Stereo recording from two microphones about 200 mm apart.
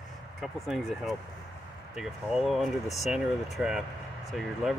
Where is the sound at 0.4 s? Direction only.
Centre (ahead or behind).